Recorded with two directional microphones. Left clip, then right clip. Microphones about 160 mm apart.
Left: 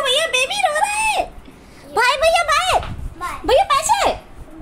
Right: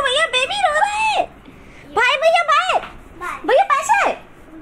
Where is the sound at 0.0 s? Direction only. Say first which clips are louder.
Even; centre (ahead or behind).